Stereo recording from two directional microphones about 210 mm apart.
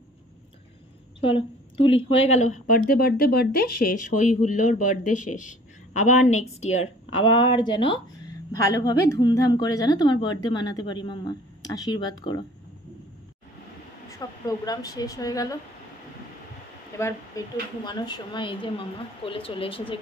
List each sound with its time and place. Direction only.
1.2 s a woman's voice: 25° left (ahead or behind)
14.0 s speech: 15° left (ahead or behind)
16.9 s a woman's voice: 15° left (ahead or behind)